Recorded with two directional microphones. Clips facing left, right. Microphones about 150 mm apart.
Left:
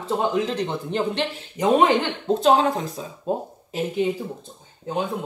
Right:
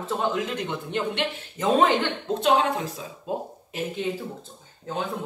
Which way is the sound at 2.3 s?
35° left (ahead or behind).